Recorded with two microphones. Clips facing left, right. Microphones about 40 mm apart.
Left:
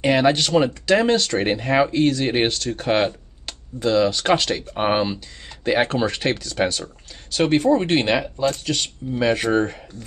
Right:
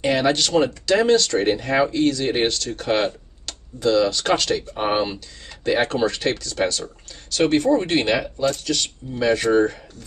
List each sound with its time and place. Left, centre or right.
0.0 s speech: centre